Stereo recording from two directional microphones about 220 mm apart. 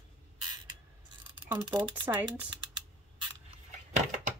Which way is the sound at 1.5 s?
10° right (ahead or behind).